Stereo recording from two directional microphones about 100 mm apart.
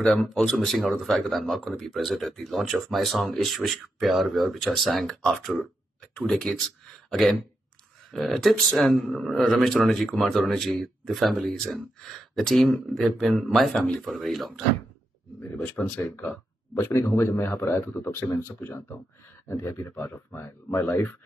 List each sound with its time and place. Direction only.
0.0 s speech: 5° left (ahead or behind)
14.0 s speech: centre (ahead or behind)
15.6 s speech: 15° left (ahead or behind)
16.7 s speech: 30° left (ahead or behind)
19.4 s speech: 30° left (ahead or behind)
20.0 s speech: 20° left (ahead or behind)